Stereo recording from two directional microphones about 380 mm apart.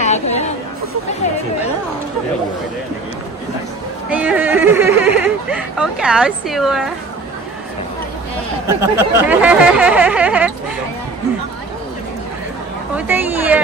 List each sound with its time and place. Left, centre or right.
0.0 s speech: centre
4.1 s speech: centre
8.6 s speech: centre
12.9 s speech: centre